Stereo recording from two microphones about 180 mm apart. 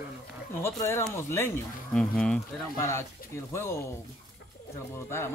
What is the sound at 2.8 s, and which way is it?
Speech, 15° left (ahead or behind).